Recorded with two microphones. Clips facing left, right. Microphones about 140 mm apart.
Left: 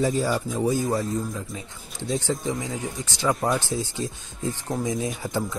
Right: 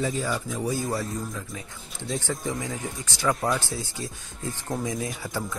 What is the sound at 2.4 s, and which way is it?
Speech, 20° left (ahead or behind).